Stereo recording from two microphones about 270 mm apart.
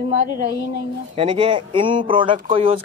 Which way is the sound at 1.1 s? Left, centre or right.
Centre.